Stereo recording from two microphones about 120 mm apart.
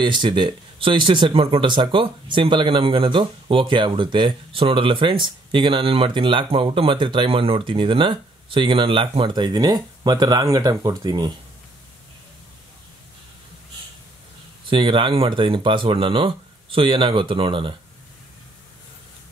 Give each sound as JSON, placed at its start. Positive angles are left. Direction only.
{"t": 0.0, "sound": "speech", "side_deg": -40}
{"t": 14.7, "sound": "speech", "side_deg": -45}